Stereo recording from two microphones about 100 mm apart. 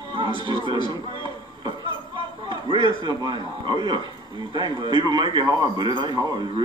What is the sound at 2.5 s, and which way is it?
A man's voice, 55° right (ahead or behind).